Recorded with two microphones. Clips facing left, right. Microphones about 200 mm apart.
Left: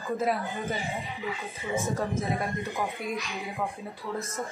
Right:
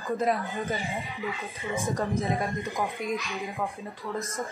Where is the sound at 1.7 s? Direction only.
15° right (ahead or behind).